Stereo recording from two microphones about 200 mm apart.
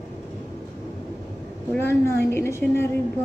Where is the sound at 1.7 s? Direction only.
10° left (ahead or behind).